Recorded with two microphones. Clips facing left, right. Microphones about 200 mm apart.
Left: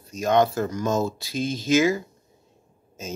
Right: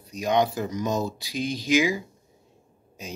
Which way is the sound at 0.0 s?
15° right (ahead or behind).